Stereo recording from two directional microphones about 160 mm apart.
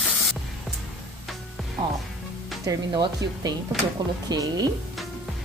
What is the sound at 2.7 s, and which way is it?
Speech, 25° right (ahead or behind).